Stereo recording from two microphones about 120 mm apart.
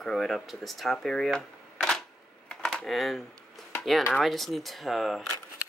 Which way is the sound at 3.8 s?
Centre (ahead or behind).